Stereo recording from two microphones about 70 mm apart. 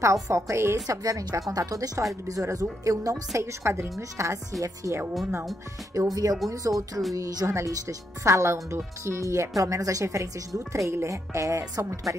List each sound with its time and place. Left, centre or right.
0.0 s speech: right
0.8 s speech: right
5.9 s speech: right
6.7 s music: centre
7.4 s speech: right